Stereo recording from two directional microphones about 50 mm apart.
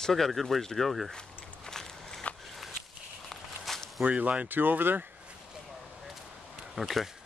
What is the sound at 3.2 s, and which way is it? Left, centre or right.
Walk, centre.